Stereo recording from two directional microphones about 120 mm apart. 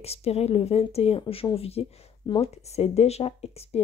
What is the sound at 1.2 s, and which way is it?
A woman's voice, 45° left (ahead or behind).